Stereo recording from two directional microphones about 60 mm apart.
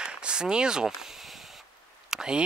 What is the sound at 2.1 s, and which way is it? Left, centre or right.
Speech, centre.